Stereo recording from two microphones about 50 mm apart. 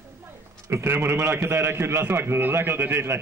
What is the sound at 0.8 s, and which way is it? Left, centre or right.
A man's voice, right.